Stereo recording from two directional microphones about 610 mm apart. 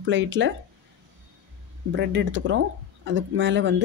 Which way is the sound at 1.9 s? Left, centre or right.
Centre.